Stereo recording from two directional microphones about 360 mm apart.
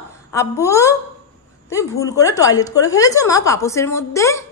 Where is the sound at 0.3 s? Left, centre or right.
Centre.